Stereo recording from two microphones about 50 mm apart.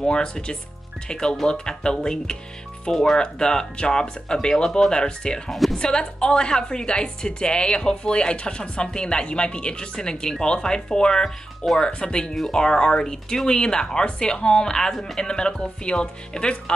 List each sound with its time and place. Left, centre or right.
0.0 s a woman's voice: centre
5.5 s a woman's voice: centre
5.8 s a woman's voice: centre